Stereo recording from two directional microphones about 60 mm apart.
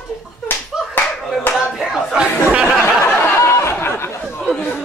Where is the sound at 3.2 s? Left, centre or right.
Left.